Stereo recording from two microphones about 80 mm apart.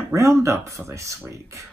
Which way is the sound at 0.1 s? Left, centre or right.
Right.